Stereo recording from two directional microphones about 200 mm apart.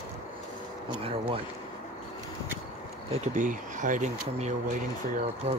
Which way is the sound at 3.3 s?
40° right (ahead or behind).